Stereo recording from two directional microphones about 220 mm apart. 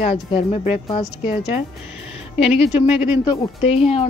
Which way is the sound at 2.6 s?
25° left (ahead or behind).